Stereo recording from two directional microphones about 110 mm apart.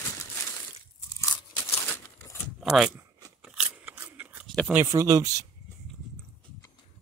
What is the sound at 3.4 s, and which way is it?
Scissors, 5° right (ahead or behind).